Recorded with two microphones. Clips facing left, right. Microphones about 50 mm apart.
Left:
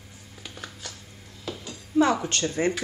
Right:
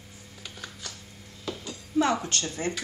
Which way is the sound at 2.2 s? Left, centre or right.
Left.